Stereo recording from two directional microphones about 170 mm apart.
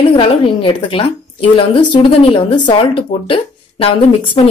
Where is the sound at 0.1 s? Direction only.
30° left (ahead or behind).